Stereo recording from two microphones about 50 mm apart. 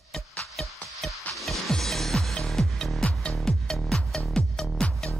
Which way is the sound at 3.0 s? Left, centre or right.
Centre.